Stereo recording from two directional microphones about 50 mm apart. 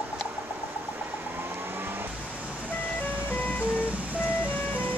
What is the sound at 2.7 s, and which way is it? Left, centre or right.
Ice cream truck, left.